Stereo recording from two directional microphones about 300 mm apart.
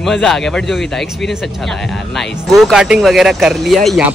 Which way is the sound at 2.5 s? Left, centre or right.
Centre.